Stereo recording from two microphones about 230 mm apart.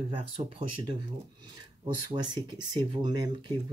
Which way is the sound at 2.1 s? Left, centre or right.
Centre.